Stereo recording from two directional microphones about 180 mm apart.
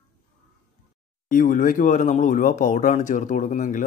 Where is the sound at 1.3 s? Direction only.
45° left (ahead or behind).